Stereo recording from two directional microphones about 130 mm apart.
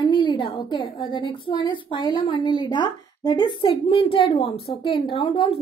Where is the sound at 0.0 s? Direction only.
35° left (ahead or behind).